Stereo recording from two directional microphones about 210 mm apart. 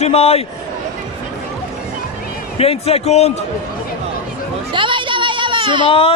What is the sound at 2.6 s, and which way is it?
Speech, 30° left (ahead or behind).